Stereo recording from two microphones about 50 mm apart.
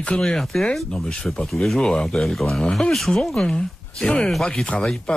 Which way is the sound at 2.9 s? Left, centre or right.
Centre.